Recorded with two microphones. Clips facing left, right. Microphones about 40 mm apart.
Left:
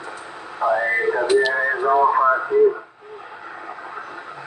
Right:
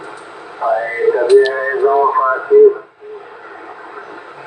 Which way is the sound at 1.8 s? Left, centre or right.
Centre.